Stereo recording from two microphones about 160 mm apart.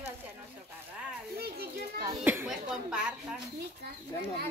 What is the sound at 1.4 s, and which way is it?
Children playing, 75° right (ahead or behind).